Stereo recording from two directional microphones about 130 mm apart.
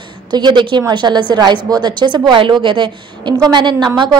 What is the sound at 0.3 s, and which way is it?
A woman's voice, 35° right (ahead or behind).